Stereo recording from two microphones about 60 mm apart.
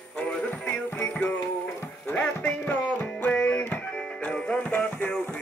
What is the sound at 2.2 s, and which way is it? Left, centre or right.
Music, left.